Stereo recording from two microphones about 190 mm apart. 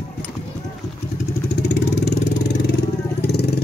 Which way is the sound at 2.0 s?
60° left (ahead or behind).